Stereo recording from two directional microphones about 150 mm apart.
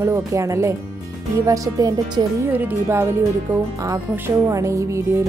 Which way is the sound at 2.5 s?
10° right (ahead or behind).